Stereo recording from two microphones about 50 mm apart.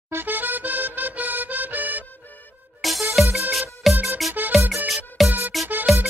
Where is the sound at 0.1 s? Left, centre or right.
Right.